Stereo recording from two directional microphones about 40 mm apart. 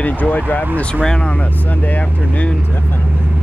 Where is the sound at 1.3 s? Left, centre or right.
Left.